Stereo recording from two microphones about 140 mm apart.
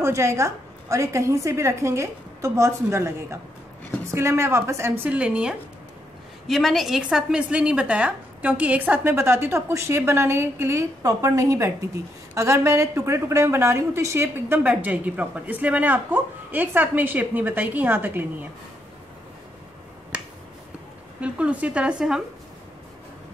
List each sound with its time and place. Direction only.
0.0 s a woman's voice: 20° right (ahead or behind)
21.2 s a woman's voice: 10° right (ahead or behind)